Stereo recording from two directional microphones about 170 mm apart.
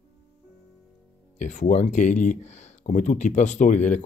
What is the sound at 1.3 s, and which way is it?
Speech, 45° left (ahead or behind).